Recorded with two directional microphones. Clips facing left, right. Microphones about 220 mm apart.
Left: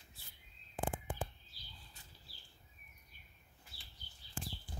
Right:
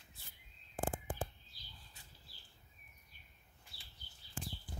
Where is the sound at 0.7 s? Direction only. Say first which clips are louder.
Right 1 dB; 45° right (ahead or behind).